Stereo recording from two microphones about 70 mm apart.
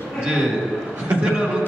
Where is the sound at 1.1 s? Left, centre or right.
Centre.